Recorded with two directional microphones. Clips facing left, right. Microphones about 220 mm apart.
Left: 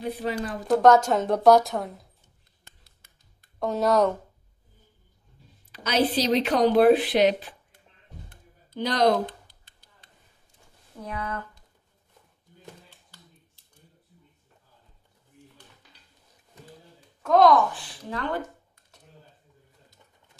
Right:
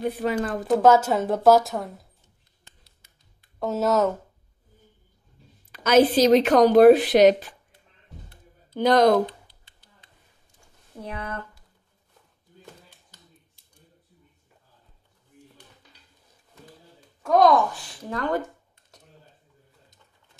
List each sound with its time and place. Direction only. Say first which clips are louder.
0.0 s a woman's voice: right 4 dB; 55° right (ahead or behind)
0.7 s speech: even; 5° right (ahead or behind)
2.8 s music: right 1 dB; 50° left (ahead or behind)
3.5 s speech: even; 5° right (ahead or behind)
5.7 s a woman's voice: right 7 dB; 50° right (ahead or behind)
8.7 s a woman's voice: right 5 dB; 50° right (ahead or behind)
11.0 s speech: even; 30° right (ahead or behind)
17.7 s a woman's voice: right 3 dB; 45° right (ahead or behind)